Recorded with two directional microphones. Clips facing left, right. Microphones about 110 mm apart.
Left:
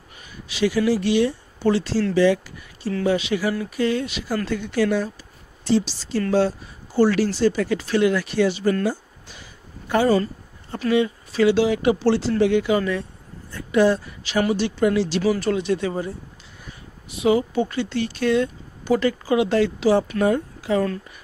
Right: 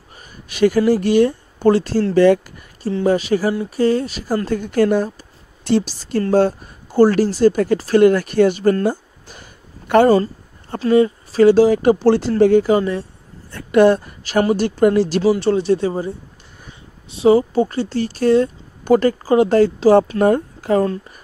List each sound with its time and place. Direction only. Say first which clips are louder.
0.5 s speech: right 6 dB; 50° right (ahead or behind)
8.8 s a sound: right 5 dB; 50° right (ahead or behind)
10.0 s speech: right 5 dB; 35° right (ahead or behind)
13.5 s speech: right 6 dB; 60° right (ahead or behind)
15.2 s speech: right 6 dB; 30° right (ahead or behind)
17.1 s speech: right 6 dB; 35° right (ahead or behind)